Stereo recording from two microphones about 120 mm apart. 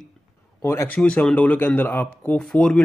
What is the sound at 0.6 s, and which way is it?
Speech, 20° left (ahead or behind).